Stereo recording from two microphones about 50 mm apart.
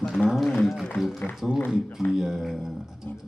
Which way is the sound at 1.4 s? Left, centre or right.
Centre.